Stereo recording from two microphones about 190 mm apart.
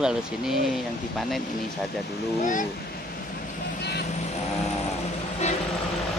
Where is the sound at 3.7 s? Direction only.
60° left (ahead or behind).